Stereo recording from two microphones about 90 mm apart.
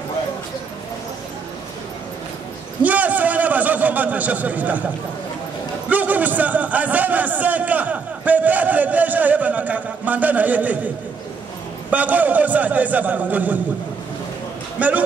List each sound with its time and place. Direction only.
2.8 s a sound: 20° right (ahead or behind)
5.9 s a man's voice: 20° right (ahead or behind)
11.9 s a man's voice: 20° right (ahead or behind)
14.8 s a man's voice: 15° right (ahead or behind)